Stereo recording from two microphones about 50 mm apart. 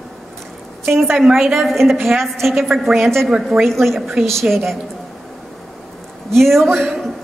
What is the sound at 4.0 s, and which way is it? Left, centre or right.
Speech, centre.